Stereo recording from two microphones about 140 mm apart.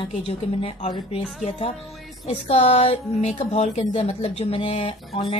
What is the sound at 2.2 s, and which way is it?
Speech, 45° left (ahead or behind).